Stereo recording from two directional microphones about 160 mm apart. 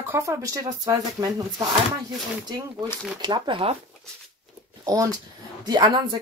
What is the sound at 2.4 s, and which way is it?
Speech, 25° right (ahead or behind).